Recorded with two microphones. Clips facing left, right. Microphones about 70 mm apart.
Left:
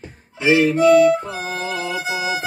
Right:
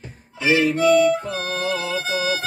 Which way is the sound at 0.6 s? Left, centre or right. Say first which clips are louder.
Left 4 dB; centre.